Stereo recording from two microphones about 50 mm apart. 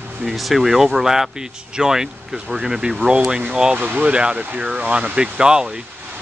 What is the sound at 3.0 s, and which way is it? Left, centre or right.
Speech, right.